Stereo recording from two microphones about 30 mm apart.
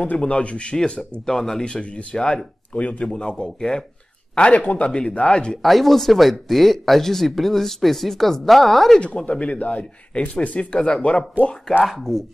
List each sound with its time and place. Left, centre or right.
0.2 s speech: left
0.7 s speech: left
1.6 s speech: left
2.7 s speech: left
3.1 s speech: left
4.6 s speech: left
4.8 s speech: left
5.6 s speech: centre
9.0 s speech: left
10.9 s speech: left
11.8 s speech: centre